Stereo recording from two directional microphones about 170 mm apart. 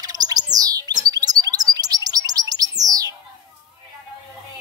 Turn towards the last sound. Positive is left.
turn(degrees=-20)  # may be behind; listen again after turning